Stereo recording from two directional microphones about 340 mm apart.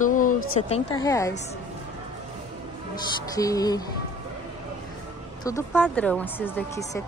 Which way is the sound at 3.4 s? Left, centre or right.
Centre.